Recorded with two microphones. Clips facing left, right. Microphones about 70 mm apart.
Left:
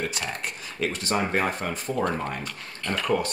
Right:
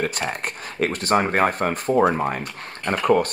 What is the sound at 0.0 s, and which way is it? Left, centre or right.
Speech, right.